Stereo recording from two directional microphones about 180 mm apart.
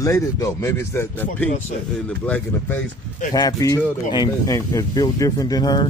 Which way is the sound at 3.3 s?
20° left (ahead or behind).